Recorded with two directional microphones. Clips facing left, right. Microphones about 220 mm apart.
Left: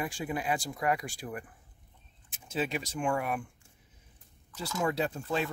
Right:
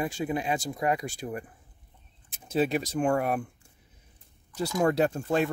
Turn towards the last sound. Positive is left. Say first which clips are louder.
# right 6 dB
turn(degrees=-50)  # may be behind; listen again after turning